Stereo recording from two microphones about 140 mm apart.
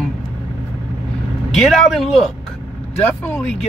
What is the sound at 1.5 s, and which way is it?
Speech, centre (ahead or behind).